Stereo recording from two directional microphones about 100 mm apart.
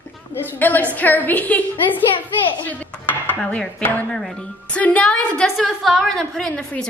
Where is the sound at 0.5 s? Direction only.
15° left (ahead or behind).